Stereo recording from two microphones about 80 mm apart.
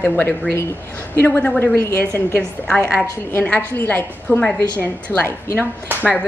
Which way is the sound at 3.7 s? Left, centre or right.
Left.